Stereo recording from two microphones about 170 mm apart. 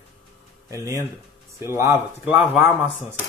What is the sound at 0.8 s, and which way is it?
Speech, 20° right (ahead or behind).